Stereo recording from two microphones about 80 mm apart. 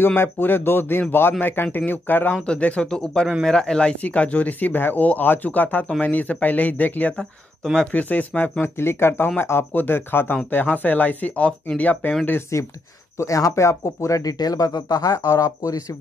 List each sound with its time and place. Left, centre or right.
0.0 s speech: left
2.3 s speech: centre
7.2 s speech: centre
7.9 s speech: centre
12.3 s speech: left